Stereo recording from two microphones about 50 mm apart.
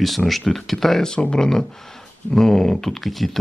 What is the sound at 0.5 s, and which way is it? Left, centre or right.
Speech, centre.